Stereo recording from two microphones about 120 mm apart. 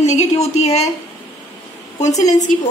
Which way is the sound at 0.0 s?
65° left (ahead or behind).